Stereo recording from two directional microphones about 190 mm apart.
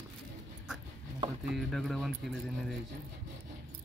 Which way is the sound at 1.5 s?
Centre (ahead or behind).